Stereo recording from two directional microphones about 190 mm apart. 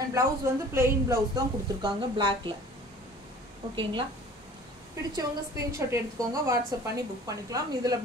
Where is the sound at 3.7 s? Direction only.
25° right (ahead or behind).